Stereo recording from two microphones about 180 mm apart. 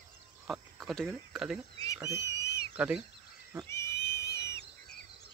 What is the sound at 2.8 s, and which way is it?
Speech, 5° right (ahead or behind).